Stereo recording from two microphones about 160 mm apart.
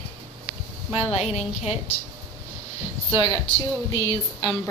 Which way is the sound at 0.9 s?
40° left (ahead or behind).